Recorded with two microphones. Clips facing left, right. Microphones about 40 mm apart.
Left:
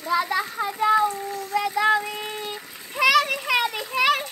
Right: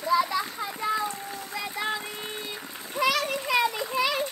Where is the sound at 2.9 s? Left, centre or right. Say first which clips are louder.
Left 6 dB; left.